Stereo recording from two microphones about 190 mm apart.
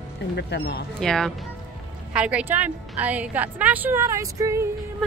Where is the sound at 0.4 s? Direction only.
60° left (ahead or behind).